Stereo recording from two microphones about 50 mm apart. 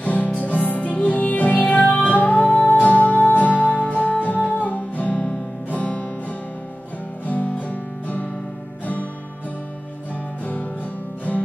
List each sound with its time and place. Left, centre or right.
0.0 s music: left
7.2 s guitar: left
10.4 s music: left